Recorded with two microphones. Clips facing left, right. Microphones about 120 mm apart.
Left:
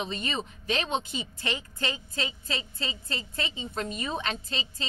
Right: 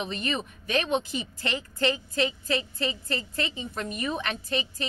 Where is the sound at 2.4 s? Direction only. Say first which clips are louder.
Right 6 dB; 20° left (ahead or behind).